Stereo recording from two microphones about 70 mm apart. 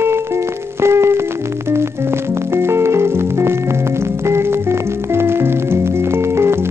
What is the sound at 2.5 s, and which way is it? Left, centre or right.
Music, right.